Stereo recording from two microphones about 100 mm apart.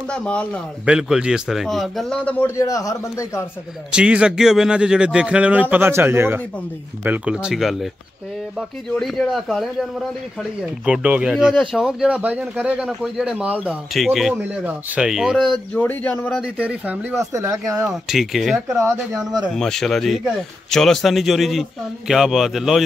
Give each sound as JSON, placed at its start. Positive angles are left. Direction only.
{"t": 0.1, "sound": "speech", "side_deg": 10}
{"t": 0.8, "sound": "a man's voice", "side_deg": -5}
{"t": 2.2, "sound": "a man's voice", "side_deg": 20}
{"t": 2.5, "sound": "a man's voice", "side_deg": 35}
{"t": 3.9, "sound": "a man's voice", "side_deg": -10}
{"t": 10.9, "sound": "a man's voice", "side_deg": -15}
{"t": 12.2, "sound": "a man's voice", "side_deg": -15}
{"t": 15.7, "sound": "speech", "side_deg": 15}
{"t": 16.5, "sound": "speech", "side_deg": -15}
{"t": 17.1, "sound": "speech", "side_deg": -30}
{"t": 17.8, "sound": "a man's voice", "side_deg": -5}